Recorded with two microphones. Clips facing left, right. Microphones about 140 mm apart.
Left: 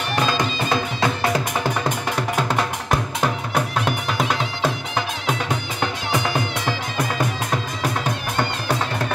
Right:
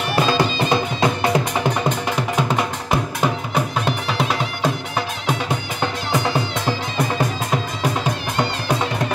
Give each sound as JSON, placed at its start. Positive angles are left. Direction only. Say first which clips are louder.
{"t": 0.4, "sound": "music", "louder": "right 3 dB", "side_deg": -20}
{"t": 2.4, "sound": "music", "louder": "right 1 dB", "side_deg": -10}
{"t": 3.8, "sound": "music", "louder": "right 1 dB", "side_deg": 0}